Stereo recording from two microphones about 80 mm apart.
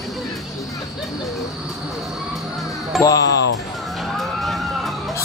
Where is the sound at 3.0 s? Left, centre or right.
Left.